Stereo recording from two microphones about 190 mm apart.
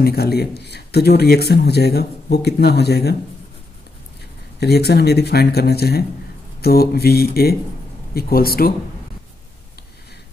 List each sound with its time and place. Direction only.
0.0 s a man's voice: 55° left (ahead or behind)
4.6 s a man's voice: 60° left (ahead or behind)